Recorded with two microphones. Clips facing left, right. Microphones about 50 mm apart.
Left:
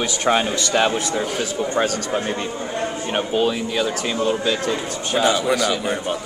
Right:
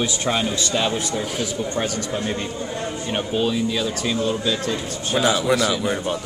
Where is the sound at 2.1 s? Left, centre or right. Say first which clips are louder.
Left 2 dB; left.